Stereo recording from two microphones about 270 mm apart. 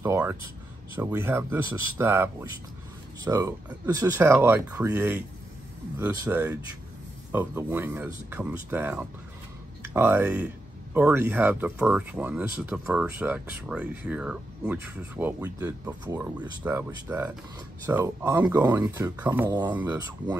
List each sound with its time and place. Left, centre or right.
0.0 s speech: centre